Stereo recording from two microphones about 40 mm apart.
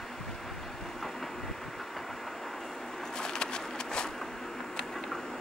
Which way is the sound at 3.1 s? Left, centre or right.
Centre.